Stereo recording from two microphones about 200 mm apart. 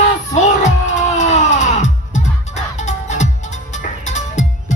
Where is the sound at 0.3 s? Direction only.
35° left (ahead or behind).